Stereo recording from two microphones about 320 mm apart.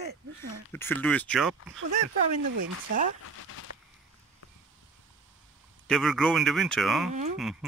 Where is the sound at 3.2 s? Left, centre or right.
Left.